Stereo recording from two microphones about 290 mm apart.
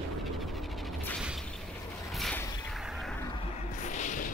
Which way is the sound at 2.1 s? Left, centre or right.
Centre.